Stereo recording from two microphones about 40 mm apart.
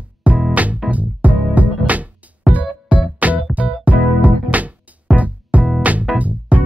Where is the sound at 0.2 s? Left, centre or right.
Right.